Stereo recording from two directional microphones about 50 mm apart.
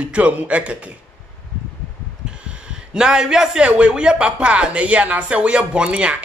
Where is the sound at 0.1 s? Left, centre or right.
Right.